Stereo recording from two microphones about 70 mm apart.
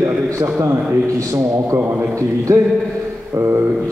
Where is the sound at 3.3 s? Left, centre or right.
Right.